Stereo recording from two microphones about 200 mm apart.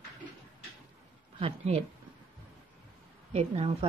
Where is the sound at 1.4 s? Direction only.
30° right (ahead or behind).